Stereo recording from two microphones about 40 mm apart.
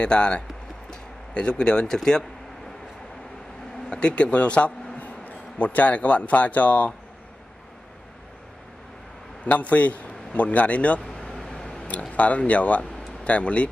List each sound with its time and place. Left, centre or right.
0.0 s speech: left
0.8 s a sound: left
3.9 s a man's voice: left
5.0 s a man's voice: left
9.4 s a man's voice: left
11.0 s a sound: centre
11.9 s speech: left